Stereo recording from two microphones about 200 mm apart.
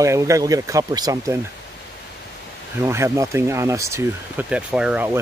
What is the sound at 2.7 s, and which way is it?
Speech, 15° right (ahead or behind).